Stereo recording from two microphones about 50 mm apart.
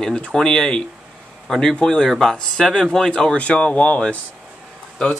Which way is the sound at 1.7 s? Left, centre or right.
Centre.